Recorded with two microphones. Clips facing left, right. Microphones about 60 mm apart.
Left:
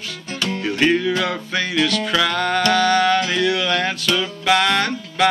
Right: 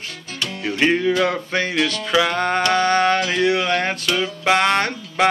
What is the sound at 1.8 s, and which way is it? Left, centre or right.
Music, right.